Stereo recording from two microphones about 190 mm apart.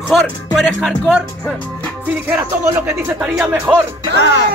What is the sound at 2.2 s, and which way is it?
Speech, 15° right (ahead or behind).